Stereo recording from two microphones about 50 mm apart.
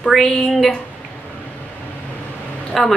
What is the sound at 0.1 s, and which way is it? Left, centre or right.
Speech, centre.